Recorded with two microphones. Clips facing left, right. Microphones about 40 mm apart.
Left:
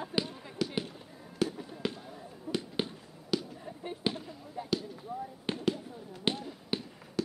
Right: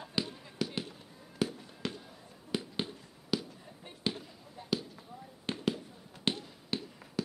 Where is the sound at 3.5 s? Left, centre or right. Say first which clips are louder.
Left 9 dB; centre.